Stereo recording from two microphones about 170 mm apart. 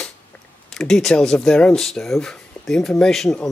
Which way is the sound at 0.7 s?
5° left (ahead or behind).